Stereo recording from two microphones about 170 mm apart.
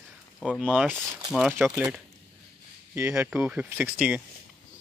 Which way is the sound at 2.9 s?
15° right (ahead or behind).